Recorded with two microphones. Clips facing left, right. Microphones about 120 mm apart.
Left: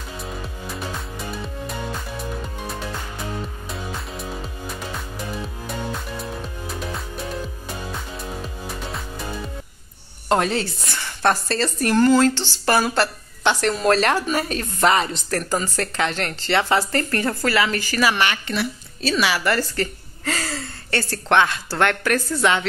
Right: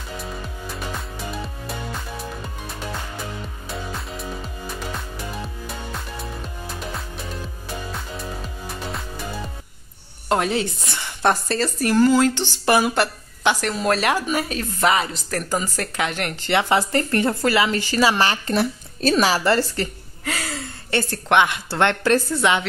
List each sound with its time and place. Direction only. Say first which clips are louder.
10.2 s speech: left 1 dB; 5° right (ahead or behind)
11.0 s speech: even; 15° right (ahead or behind)
18.1 s a woman's voice: right 3 dB; 35° right (ahead or behind)
20.2 s a sound: left 2 dB; 5° right (ahead or behind)
20.9 s a woman's voice: even; 20° right (ahead or behind)